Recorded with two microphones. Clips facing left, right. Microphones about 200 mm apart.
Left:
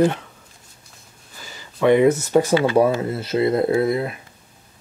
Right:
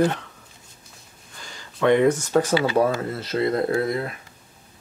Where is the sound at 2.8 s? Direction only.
25° left (ahead or behind).